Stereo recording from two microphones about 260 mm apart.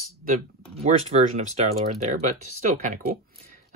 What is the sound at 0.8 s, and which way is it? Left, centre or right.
Speech, right.